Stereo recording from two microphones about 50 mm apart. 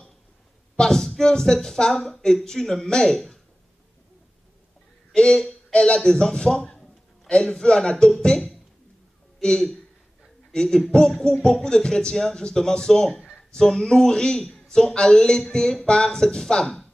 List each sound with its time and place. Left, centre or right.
0.7 s speech: centre
5.1 s speech: centre
5.7 s speech: left
5.9 s speech: centre